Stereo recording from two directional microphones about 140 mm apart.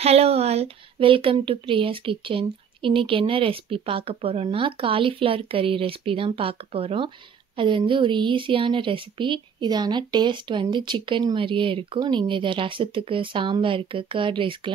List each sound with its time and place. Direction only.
0.0 s speech: 45° right (ahead or behind)